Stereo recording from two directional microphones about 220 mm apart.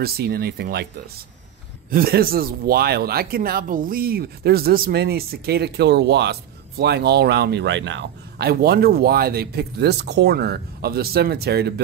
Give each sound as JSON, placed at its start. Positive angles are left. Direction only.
{"t": 0.0, "sound": "a man's voice", "side_deg": -45}
{"t": 1.9, "sound": "a man's voice", "side_deg": -45}